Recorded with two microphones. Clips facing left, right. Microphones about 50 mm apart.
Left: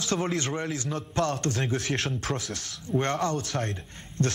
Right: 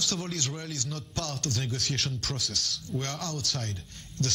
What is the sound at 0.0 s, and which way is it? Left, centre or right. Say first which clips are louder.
Speech: left 5 dB; left.